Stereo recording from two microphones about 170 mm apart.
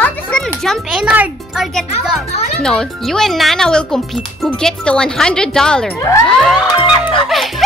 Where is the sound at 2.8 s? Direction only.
Centre (ahead or behind).